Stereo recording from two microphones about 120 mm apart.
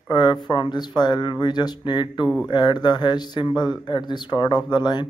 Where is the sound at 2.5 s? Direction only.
35° left (ahead or behind).